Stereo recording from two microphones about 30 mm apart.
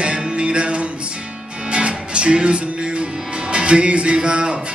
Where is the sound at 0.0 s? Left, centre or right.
Right.